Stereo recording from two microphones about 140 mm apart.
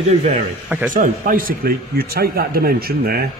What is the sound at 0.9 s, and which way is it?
A man's voice, 70° right (ahead or behind).